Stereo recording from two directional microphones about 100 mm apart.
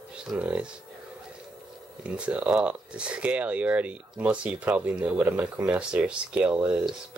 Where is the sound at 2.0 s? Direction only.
10° right (ahead or behind).